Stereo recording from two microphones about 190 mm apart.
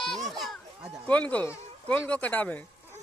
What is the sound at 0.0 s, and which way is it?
Speech, centre (ahead or behind).